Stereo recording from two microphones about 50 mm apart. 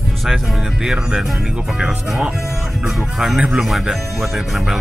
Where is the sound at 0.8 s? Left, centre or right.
Centre.